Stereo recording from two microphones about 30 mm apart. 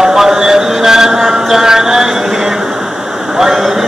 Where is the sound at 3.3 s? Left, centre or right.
Centre.